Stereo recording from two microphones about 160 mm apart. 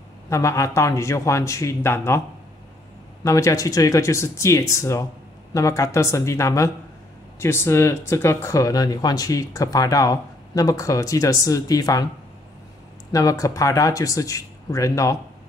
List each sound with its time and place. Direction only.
0.3 s speech: 20° left (ahead or behind)
3.3 s speech: 20° left (ahead or behind)
13.1 s speech: 20° left (ahead or behind)